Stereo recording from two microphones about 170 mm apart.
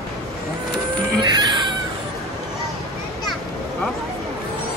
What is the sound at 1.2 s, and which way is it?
Music, 25° right (ahead or behind).